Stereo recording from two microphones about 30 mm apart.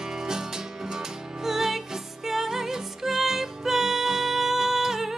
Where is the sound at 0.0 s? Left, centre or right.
Centre.